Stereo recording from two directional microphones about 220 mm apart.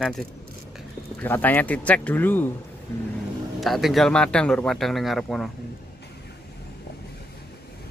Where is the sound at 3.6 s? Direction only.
Centre (ahead or behind).